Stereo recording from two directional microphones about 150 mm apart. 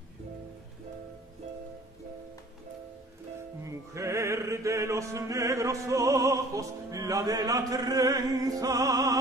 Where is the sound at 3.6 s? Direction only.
20° right (ahead or behind).